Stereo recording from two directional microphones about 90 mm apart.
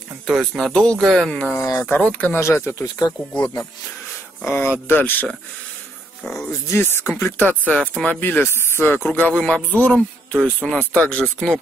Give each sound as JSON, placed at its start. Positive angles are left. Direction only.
{"t": 0.3, "sound": "speech", "side_deg": 0}
{"t": 1.5, "sound": "speech", "side_deg": 30}
{"t": 2.0, "sound": "speech", "side_deg": 15}
{"t": 2.3, "sound": "speech", "side_deg": 25}
{"t": 4.5, "sound": "speech", "side_deg": 25}
{"t": 6.2, "sound": "speech", "side_deg": 10}
{"t": 6.7, "sound": "speech", "side_deg": 30}